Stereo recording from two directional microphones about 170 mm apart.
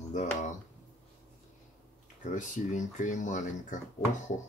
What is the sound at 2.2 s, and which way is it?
Speech, 45° left (ahead or behind).